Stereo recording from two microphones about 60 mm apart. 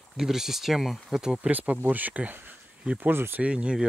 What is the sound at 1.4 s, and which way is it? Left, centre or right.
Speech, right.